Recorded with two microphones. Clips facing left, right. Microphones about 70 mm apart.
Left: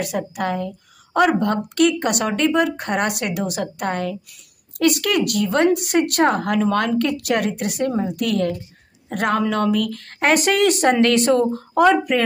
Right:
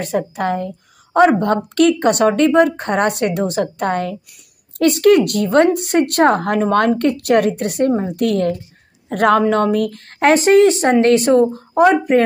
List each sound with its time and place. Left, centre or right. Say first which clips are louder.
0.0 s a woman's voice: right 4 dB; right; by 12.0 s centre